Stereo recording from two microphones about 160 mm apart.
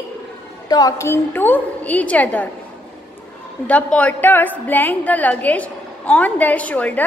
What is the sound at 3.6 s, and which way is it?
A woman's voice, 10° left (ahead or behind).